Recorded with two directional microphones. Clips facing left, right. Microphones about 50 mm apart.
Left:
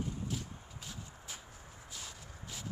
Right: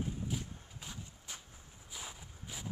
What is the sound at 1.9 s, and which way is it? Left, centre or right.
Walk, centre.